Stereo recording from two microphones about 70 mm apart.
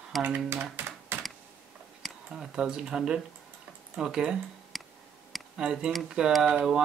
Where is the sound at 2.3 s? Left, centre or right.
Centre.